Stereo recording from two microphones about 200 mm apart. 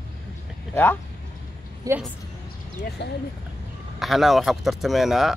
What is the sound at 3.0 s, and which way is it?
Speech, 60° left (ahead or behind).